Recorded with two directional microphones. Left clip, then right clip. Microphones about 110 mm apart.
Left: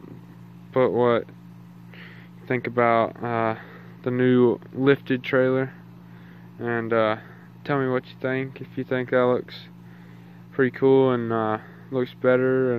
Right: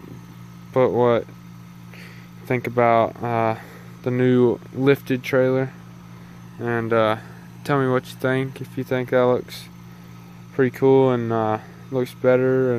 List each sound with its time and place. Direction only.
0.7 s speech: 20° right (ahead or behind)
2.4 s speech: 25° right (ahead or behind)
8.2 s speech: 45° right (ahead or behind)
8.7 s speech: 20° right (ahead or behind)